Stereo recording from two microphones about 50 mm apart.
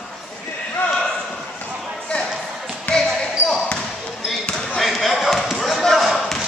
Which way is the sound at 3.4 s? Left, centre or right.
Centre.